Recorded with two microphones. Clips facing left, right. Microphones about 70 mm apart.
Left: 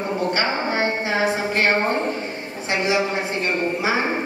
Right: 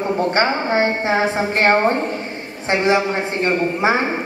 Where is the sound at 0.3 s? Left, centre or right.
Right.